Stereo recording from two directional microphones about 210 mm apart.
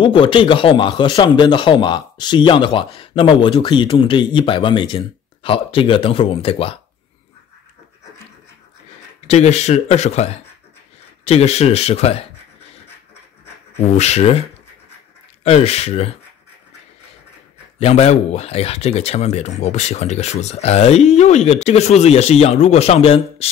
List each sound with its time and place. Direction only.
0.0 s a man's voice: 25° left (ahead or behind)
9.3 s a man's voice: 30° left (ahead or behind)
13.8 s speech: 30° left (ahead or behind)
15.4 s a man's voice: 30° left (ahead or behind)
17.7 s speech: 30° left (ahead or behind)